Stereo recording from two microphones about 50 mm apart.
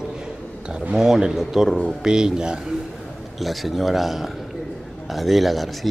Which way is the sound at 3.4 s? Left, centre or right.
Centre.